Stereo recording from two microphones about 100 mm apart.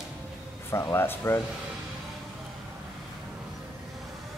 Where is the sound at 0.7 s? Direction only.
25° left (ahead or behind).